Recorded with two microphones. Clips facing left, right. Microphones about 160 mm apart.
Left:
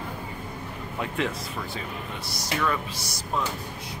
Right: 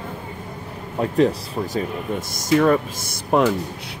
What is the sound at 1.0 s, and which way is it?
Speech, 35° right (ahead or behind).